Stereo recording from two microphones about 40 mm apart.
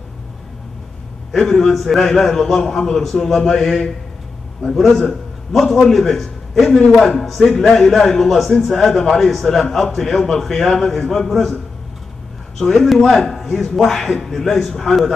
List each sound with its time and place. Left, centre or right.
1.3 s a man's voice: centre
5.5 s a man's voice: centre
12.5 s a man's voice: centre